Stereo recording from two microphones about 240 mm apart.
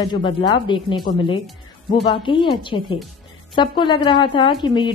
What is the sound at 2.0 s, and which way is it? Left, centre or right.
A woman's voice, left.